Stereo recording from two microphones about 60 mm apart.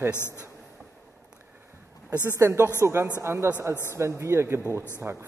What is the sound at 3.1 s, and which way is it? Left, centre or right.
Speech, right.